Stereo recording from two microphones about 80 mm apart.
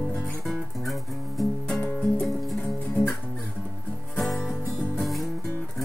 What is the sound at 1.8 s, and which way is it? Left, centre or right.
Music, centre.